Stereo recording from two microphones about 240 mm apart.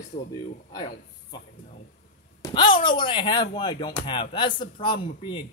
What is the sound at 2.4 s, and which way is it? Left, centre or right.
Speech, centre.